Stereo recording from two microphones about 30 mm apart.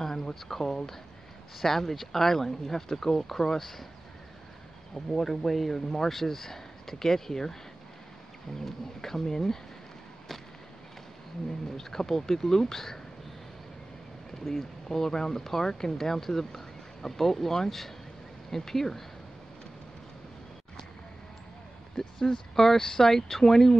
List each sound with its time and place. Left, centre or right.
0.0 s speech: centre
4.9 s speech: centre
8.5 s speech: centre
11.7 s speech: centre
14.4 s speech: centre
21.9 s speech: centre